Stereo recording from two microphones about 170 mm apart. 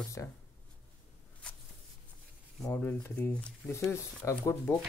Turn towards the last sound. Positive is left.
turn(degrees=15)  # may be behind; listen again after turning